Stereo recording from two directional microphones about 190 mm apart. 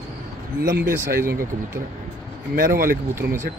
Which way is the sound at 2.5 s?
50° right (ahead or behind).